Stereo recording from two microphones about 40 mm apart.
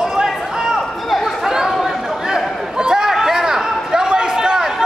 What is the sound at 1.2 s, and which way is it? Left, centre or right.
Chatter, centre.